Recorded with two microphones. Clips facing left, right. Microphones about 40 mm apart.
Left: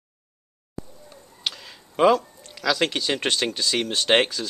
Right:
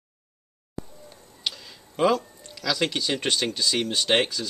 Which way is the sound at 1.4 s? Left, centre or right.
Centre.